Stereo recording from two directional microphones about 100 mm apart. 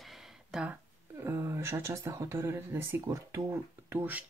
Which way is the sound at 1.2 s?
30° right (ahead or behind).